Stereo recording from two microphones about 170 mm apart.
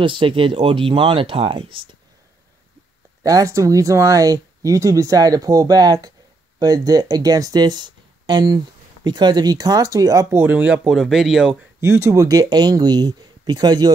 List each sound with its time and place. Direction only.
0.0 s speech: 30° right (ahead or behind)
3.3 s speech: 20° right (ahead or behind); by 11.5 s centre (ahead or behind)
11.8 s speech: 15° right (ahead or behind)